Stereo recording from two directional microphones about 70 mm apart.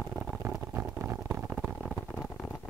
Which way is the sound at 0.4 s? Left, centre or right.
Right.